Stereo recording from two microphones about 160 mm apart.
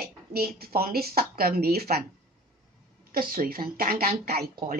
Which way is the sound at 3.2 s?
65° right (ahead or behind).